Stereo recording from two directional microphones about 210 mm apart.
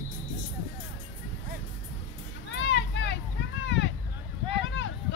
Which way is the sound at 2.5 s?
55° left (ahead or behind).